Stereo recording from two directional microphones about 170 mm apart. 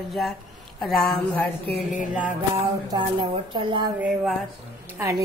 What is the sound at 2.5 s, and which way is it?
Speech, 25° right (ahead or behind).